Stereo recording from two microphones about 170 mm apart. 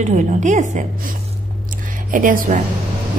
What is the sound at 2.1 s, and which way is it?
Speech, 55° right (ahead or behind).